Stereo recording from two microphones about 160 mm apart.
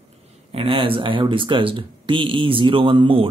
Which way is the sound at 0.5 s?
35° right (ahead or behind).